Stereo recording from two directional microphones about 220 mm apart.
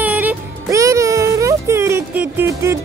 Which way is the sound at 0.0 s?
5° right (ahead or behind).